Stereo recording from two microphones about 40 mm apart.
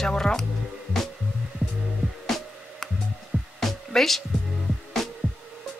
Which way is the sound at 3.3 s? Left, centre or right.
Right.